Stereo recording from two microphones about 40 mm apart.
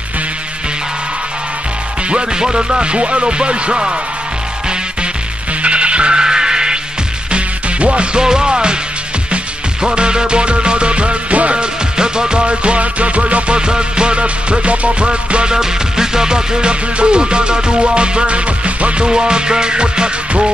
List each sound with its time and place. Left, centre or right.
2.0 s music: right
5.6 s music: right
7.3 s music: right
9.8 s music: right
12.0 s music: right
15.5 s music: centre